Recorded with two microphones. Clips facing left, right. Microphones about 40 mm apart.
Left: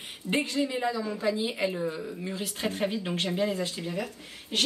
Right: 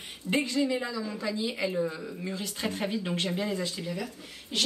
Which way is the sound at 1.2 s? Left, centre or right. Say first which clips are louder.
Left 4 dB; left.